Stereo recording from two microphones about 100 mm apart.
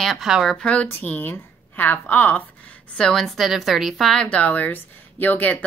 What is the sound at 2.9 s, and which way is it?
A woman's voice, 5° left (ahead or behind).